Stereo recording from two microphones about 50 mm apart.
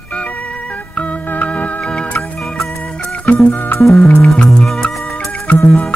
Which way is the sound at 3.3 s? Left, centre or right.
Left.